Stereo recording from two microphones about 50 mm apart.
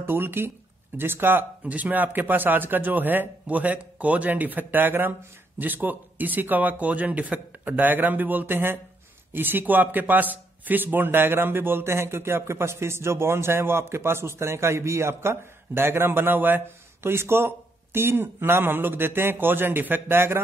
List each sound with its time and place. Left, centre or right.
0.0 s speech: right
1.6 s speech: right
17.0 s speech: right